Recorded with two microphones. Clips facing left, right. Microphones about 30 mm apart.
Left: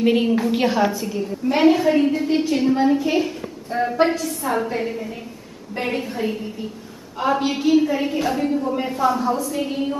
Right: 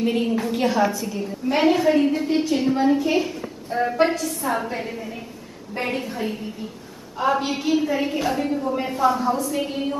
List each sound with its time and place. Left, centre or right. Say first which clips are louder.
0.0 s a woman's voice: left 4 dB; left
0.3 s a woman's voice: left 3 dB; centre